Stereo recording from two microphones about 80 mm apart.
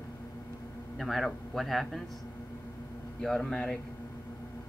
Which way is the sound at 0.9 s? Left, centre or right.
Centre.